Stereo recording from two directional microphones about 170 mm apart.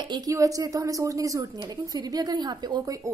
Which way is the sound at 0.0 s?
25° right (ahead or behind).